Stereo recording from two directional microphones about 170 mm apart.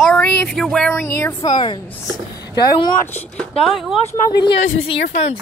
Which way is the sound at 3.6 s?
Centre (ahead or behind).